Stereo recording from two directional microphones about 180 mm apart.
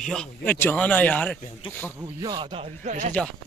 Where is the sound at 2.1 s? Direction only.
20° right (ahead or behind); by 3.1 s 40° right (ahead or behind).